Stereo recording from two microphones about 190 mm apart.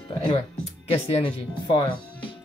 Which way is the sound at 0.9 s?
25° left (ahead or behind).